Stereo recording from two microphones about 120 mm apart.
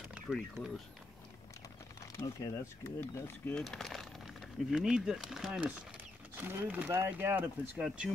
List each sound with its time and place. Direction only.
0.3 s speech: 5° left (ahead or behind)
2.1 s speech: 25° left (ahead or behind)
3.5 s speech: 5° left (ahead or behind); by 7.8 s 15° right (ahead or behind)